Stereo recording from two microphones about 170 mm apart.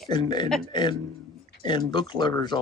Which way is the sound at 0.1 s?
25° left (ahead or behind).